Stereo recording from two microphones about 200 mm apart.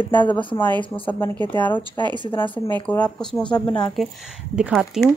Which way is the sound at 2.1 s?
25° left (ahead or behind).